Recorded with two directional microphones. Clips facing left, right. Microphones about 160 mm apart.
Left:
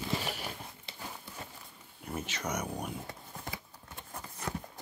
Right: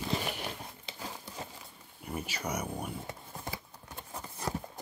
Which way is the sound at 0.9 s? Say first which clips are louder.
Right 3 dB; 15° right (ahead or behind).